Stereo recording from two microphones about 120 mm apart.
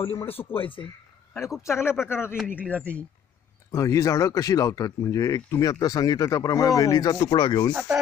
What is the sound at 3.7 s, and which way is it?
Speech, 25° left (ahead or behind).